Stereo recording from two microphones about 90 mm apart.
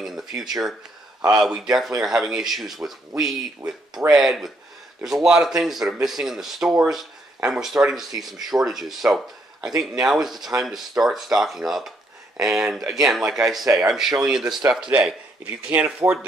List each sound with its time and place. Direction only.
0.0 s speech: 5° right (ahead or behind)
9.7 s speech: 40° right (ahead or behind)
10.0 s speech: 5° right (ahead or behind)